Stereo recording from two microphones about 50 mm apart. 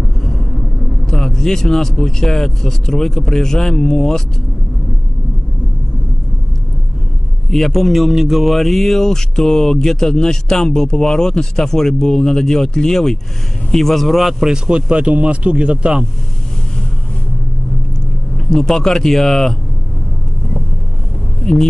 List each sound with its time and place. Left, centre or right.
1.1 s speech: centre
7.5 s speech: centre
14.5 s speech: centre
18.5 s speech: centre